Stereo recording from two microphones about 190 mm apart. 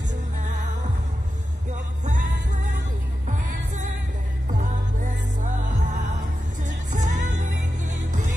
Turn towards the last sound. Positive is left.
turn(degrees=-40)  # may be behind; listen again after turning